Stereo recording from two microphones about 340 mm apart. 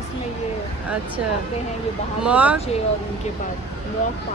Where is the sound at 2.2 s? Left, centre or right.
Centre.